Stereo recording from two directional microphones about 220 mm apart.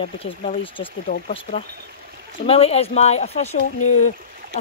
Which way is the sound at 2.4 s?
25° left (ahead or behind).